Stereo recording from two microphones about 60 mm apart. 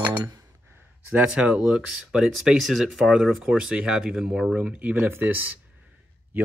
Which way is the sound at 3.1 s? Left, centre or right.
Centre.